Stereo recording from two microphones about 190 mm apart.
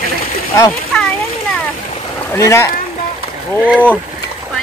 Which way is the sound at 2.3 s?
15° left (ahead or behind).